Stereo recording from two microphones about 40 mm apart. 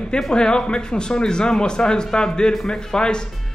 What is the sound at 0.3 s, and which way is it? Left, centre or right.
Speech, left.